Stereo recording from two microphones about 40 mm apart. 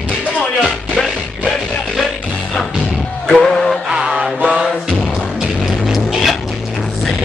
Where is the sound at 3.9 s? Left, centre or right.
Centre.